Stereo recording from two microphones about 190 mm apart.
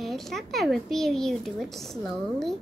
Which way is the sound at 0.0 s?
Centre (ahead or behind).